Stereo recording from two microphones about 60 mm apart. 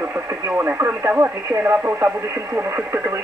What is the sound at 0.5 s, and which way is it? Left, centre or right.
Speech, right.